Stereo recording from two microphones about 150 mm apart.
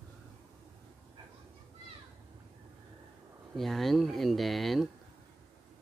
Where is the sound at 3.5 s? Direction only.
Centre (ahead or behind).